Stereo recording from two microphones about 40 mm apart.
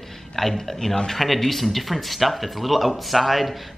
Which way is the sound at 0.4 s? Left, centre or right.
Centre.